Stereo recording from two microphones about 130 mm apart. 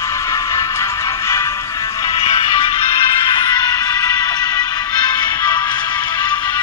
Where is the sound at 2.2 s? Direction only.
45° left (ahead or behind).